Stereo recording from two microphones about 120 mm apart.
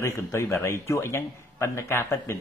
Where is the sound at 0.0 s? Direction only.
20° left (ahead or behind).